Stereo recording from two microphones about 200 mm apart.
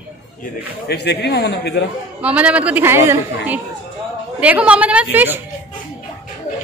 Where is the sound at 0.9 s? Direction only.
55° left (ahead or behind).